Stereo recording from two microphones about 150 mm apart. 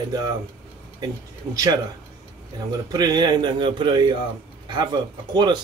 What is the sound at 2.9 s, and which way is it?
A man's voice, 25° right (ahead or behind).